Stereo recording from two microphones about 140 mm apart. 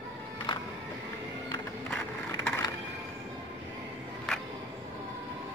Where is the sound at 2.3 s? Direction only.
10° left (ahead or behind).